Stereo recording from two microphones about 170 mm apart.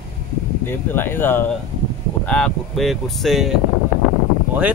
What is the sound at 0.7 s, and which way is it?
Speech, 10° left (ahead or behind).